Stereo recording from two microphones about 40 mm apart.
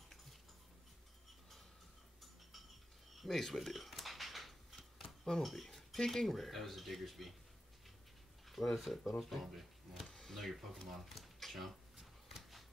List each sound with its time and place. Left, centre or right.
3.2 s shuffling cards: centre
5.2 s speech: centre
8.5 s speech: centre
11.3 s a sound: centre